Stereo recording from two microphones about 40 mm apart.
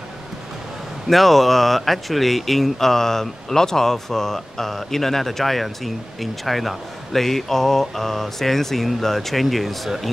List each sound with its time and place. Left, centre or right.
1.0 s speech: centre